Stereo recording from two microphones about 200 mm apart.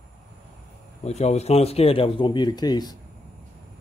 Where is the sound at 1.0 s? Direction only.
35° left (ahead or behind).